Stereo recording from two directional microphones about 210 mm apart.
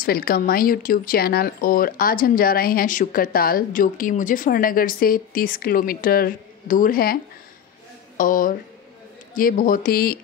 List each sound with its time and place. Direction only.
0.0 s speech: 45° left (ahead or behind)
8.2 s speech: 40° left (ahead or behind)